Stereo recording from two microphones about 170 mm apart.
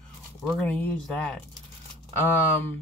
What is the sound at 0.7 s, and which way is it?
Speech, 5° left (ahead or behind).